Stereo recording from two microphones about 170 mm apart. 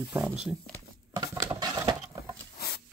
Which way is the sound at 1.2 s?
20° right (ahead or behind).